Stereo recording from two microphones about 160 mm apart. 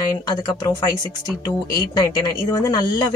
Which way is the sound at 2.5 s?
25° left (ahead or behind).